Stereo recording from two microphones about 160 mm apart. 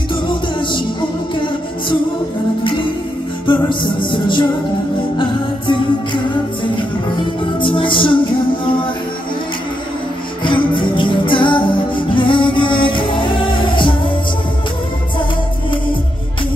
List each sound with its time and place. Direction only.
0.1 s music: 30° left (ahead or behind)
3.4 s music: 30° left (ahead or behind)
10.4 s music: 30° left (ahead or behind)